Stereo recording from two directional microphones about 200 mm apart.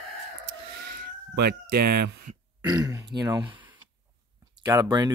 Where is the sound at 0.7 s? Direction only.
50° right (ahead or behind).